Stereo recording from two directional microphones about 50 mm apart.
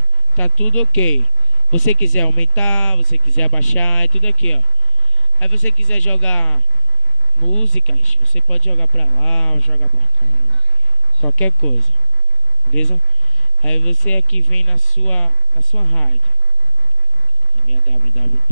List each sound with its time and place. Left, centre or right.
0.4 s speech: left
11.3 s speech: left
12.7 s speech: centre
13.6 s speech: left